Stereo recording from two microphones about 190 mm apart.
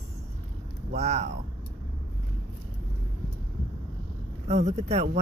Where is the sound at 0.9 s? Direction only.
35° right (ahead or behind).